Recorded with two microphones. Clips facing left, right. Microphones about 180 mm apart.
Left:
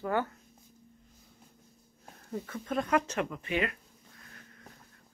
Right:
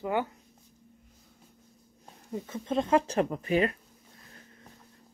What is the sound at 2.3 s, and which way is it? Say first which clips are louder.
Speech: right 3 dB; 25° right (ahead or behind).